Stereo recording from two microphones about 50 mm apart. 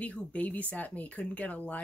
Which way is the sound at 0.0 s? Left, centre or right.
Left.